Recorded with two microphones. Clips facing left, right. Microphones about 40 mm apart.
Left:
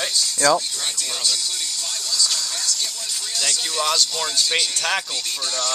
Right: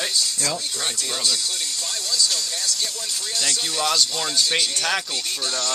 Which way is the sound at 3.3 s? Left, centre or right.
Centre.